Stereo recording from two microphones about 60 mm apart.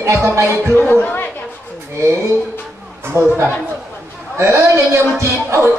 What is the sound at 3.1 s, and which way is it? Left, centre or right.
Music, right.